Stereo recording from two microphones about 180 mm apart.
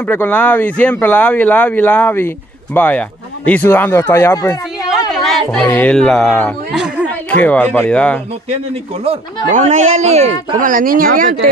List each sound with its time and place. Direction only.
0.0 s speech: 10° left (ahead or behind)
5.1 s speech: centre (ahead or behind)
7.2 s speech: 10° left (ahead or behind)
9.5 s speech: 40° right (ahead or behind)